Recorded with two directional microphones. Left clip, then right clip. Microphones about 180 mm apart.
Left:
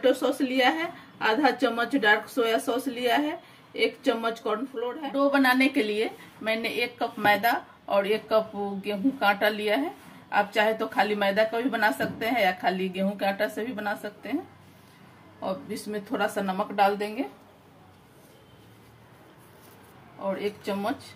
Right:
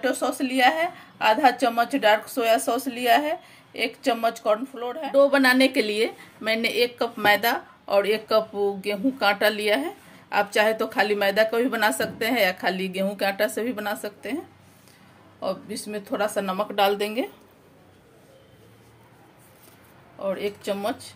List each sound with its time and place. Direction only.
0.0 s a woman's voice: 25° right (ahead or behind); by 14.3 s 45° right (ahead or behind)
15.7 s speech: 20° right (ahead or behind)
16.5 s a woman's voice: 35° right (ahead or behind)
20.2 s speech: 30° right (ahead or behind)